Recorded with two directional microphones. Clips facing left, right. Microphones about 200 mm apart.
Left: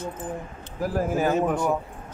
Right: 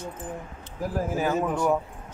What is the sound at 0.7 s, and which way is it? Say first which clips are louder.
Speech: left 3 dB; 80° left.